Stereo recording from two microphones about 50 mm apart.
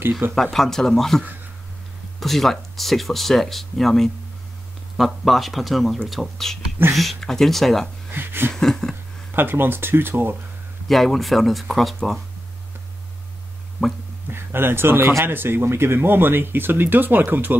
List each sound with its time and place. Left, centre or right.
0.3 s speech: centre
8.1 s a sound: right
8.5 s a sound: centre
9.3 s speech: right
10.9 s speech: centre
13.8 s speech: centre
14.3 s speech: right